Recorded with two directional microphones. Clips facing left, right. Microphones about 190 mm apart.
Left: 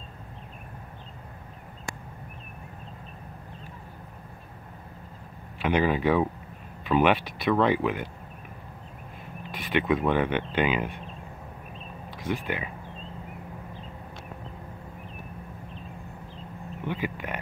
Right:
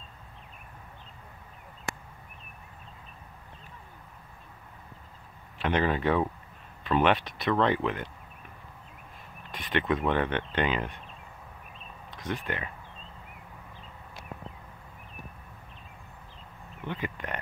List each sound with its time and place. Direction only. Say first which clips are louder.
5.6 s speech: left 3 dB; 5° left (ahead or behind)
9.5 s speech: left 3 dB; 5° left (ahead or behind)
12.2 s speech: left 3 dB; 5° left (ahead or behind)
16.8 s a sound: left 3 dB; 10° left (ahead or behind)